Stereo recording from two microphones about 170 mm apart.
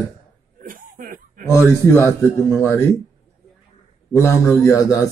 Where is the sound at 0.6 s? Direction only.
55° right (ahead or behind).